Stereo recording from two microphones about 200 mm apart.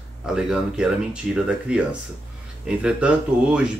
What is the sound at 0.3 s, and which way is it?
Speech, 5° right (ahead or behind).